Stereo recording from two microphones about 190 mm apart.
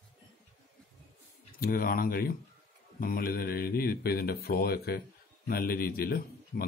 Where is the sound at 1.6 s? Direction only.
50° left (ahead or behind).